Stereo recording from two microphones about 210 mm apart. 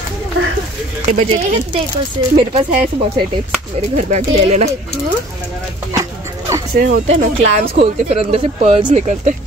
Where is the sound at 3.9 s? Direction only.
30° right (ahead or behind).